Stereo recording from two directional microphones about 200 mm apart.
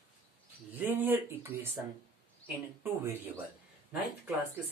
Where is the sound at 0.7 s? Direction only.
10° right (ahead or behind).